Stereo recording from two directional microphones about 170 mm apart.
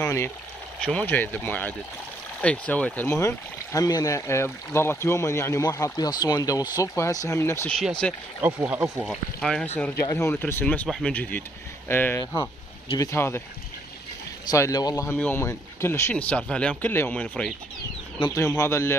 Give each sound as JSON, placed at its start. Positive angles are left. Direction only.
{"t": 0.0, "sound": "speech", "side_deg": 15}
{"t": 8.0, "sound": "speech", "side_deg": 5}
{"t": 8.4, "sound": "speech", "side_deg": -10}
{"t": 8.9, "sound": "speech", "side_deg": 0}
{"t": 14.5, "sound": "speech", "side_deg": 20}